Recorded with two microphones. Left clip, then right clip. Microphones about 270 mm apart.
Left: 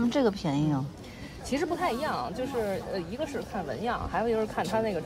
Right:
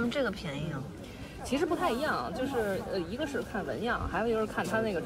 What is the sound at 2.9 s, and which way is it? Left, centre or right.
Speech, left.